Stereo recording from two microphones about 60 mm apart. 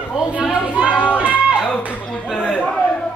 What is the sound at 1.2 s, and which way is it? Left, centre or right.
Music, right.